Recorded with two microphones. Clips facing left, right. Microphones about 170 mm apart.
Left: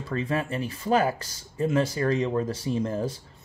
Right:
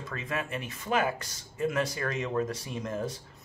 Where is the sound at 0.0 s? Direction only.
30° left (ahead or behind).